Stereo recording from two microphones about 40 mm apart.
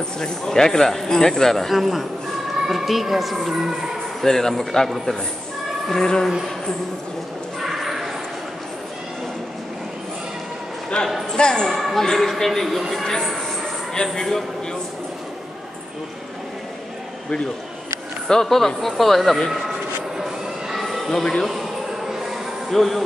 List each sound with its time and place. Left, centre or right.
0.2 s a woman's voice: centre
4.2 s speech: centre
7.6 s a sound: centre
10.9 s speech: centre
11.6 s a woman's voice: centre
14.0 s speech: left
18.3 s speech: centre
20.2 s a sound: centre
21.1 s speech: centre
21.5 s a sound: centre
22.7 s a woman's voice: centre